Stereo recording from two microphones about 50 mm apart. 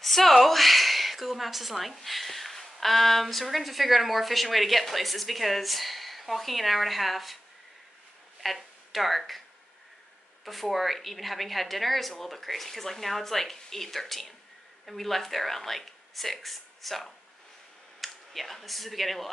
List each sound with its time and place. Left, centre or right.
0.0 s a woman's voice: centre
8.4 s speech: centre
10.4 s speech: centre